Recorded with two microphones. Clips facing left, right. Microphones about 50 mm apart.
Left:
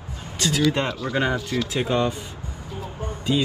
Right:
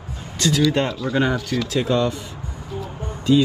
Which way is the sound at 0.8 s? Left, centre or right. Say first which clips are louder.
Right 3 dB; left.